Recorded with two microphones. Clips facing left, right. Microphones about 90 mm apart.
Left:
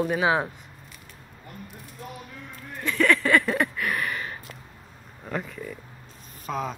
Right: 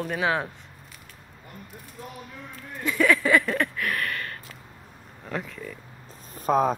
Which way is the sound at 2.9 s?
5° right (ahead or behind).